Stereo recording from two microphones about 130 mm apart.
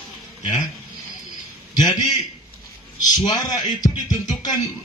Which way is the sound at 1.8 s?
30° left (ahead or behind).